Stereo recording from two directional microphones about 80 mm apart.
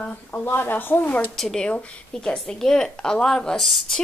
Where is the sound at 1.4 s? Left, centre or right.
Centre.